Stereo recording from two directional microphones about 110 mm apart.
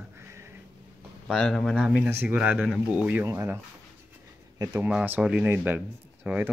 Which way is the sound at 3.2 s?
25° right (ahead or behind).